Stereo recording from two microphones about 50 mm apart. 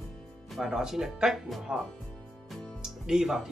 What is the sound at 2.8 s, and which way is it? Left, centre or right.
Music, centre.